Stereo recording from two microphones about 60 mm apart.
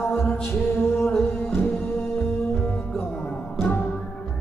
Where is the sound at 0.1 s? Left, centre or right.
Left.